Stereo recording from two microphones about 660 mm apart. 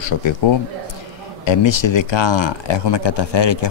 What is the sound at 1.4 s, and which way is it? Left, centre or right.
Speech, left.